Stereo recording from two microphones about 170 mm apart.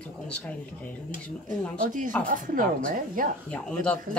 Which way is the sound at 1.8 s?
50° right (ahead or behind).